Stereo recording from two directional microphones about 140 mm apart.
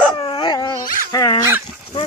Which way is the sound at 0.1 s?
40° left (ahead or behind).